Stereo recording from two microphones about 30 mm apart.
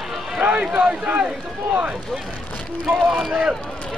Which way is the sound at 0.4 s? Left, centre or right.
Right.